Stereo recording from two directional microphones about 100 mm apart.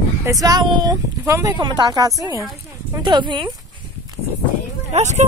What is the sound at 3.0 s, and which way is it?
Speech, 50° right (ahead or behind).